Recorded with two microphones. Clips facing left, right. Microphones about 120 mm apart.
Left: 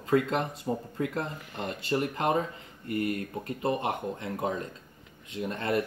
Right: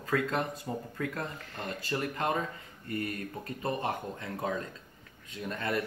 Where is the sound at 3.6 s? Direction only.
25° left (ahead or behind).